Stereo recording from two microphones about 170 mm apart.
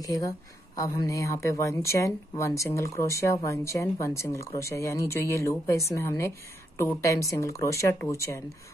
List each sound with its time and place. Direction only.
0.0 s a woman's voice: 20° left (ahead or behind)